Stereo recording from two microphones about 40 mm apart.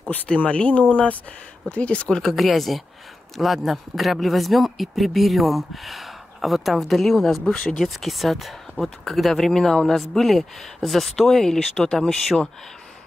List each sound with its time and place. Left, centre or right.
0.4 s speech: left
2.2 s speech: centre
8.0 s speech: centre